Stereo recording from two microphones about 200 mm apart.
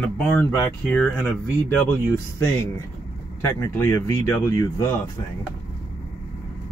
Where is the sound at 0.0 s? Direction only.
10° left (ahead or behind).